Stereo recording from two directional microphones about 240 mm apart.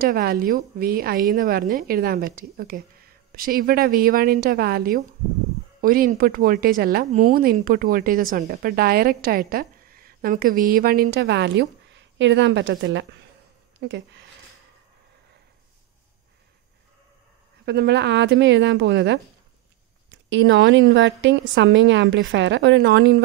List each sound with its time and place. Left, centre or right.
0.0 s speech: right
17.6 s a woman's voice: right